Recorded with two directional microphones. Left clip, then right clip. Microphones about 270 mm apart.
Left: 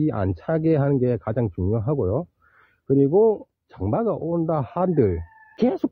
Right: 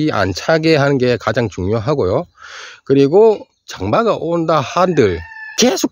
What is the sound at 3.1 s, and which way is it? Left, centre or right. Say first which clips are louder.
Speech: right 8 dB; right.